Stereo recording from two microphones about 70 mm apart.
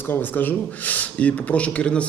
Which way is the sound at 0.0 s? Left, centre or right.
Left.